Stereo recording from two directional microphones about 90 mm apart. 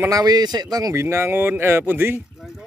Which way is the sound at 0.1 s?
50° right (ahead or behind).